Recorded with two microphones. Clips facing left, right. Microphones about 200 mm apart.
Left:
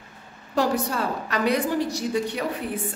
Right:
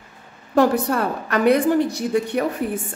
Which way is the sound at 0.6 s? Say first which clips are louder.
Right 6 dB; 55° right (ahead or behind).